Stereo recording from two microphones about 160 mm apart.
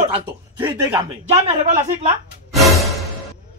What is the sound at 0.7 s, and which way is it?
Speech, 10° right (ahead or behind).